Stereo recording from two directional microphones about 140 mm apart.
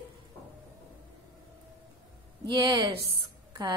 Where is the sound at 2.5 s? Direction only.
35° right (ahead or behind).